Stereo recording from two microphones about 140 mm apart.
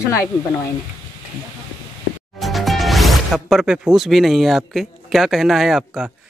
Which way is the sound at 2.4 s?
Centre (ahead or behind).